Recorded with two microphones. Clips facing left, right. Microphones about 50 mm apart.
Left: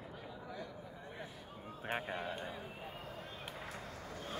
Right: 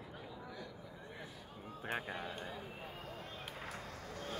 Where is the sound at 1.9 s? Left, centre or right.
Left.